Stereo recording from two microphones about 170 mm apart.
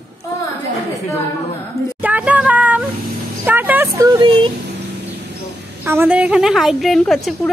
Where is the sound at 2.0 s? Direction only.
10° right (ahead or behind).